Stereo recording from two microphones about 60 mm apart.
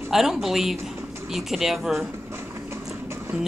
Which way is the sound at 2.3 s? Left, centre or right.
Right.